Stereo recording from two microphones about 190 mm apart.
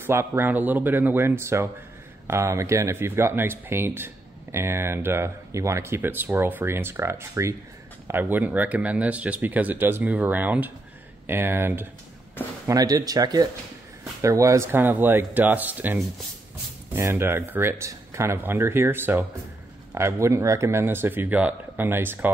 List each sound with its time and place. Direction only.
0.0 s speech: 15° right (ahead or behind)